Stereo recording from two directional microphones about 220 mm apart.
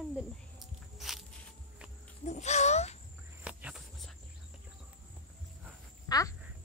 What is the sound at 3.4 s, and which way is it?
Cricket, 5° right (ahead or behind).